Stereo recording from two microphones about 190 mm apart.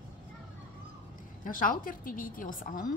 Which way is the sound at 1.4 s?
45° left (ahead or behind).